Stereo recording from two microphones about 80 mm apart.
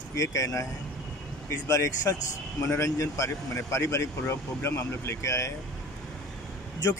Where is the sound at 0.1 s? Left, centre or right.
Left.